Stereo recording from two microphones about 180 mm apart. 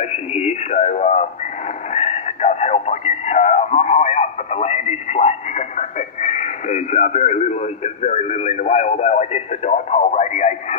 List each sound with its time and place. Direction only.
0.0 s speech: 40° left (ahead or behind)